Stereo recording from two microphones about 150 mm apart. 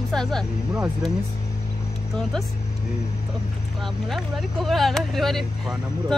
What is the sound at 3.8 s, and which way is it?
Speech, centre (ahead or behind).